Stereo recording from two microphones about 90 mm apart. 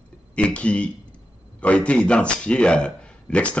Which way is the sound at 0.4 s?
15° left (ahead or behind).